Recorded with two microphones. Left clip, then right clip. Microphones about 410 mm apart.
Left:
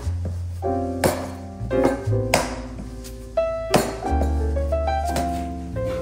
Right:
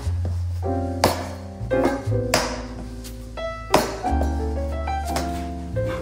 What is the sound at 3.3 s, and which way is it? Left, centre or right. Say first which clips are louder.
Music: left 2 dB; centre.